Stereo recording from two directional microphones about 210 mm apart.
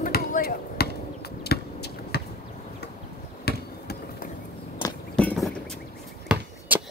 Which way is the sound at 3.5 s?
50° left (ahead or behind).